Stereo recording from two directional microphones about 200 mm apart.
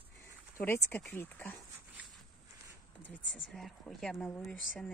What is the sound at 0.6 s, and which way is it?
Speech, 10° left (ahead or behind).